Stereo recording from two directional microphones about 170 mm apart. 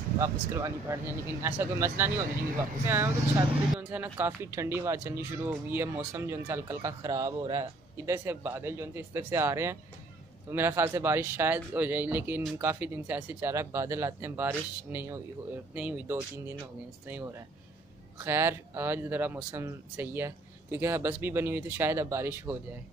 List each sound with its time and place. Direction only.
0.2 s speech: 15° right (ahead or behind)